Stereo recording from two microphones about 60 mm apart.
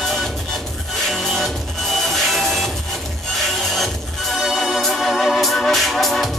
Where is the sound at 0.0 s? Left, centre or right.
Centre.